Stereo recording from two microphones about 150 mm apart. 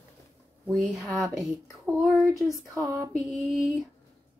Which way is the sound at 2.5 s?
20° right (ahead or behind).